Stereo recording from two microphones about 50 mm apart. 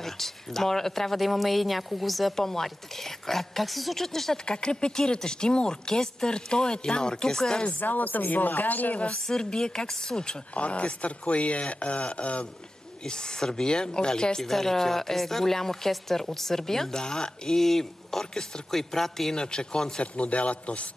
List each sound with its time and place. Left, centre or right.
0.0 s speech: centre
7.8 s speech: left
9.3 s speech: centre
19.3 s speech: centre